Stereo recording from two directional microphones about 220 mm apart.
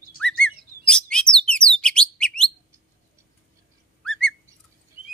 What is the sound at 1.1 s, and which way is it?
Bird, 5° left (ahead or behind).